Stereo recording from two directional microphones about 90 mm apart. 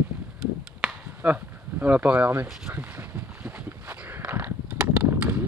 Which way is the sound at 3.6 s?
20° right (ahead or behind).